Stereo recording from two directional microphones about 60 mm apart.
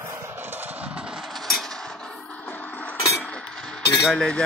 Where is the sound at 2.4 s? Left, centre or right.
Left.